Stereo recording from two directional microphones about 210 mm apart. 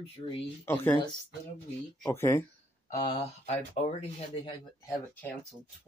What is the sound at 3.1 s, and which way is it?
Speech, 30° left (ahead or behind).